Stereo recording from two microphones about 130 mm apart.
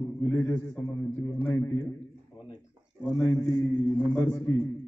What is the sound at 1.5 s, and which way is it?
Speech, 20° left (ahead or behind).